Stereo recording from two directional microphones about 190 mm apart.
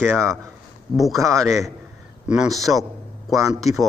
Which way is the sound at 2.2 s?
Centre (ahead or behind).